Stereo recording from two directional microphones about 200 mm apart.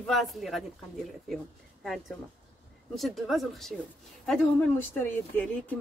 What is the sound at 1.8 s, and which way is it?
A man's voice, centre (ahead or behind).